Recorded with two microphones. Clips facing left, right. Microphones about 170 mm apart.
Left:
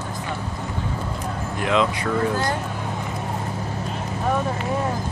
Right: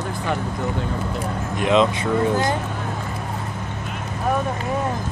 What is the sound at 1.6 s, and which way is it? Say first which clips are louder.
Speech: right 3 dB; 20° right (ahead or behind).